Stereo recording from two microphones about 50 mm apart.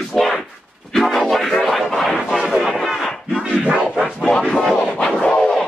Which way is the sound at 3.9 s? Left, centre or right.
Centre.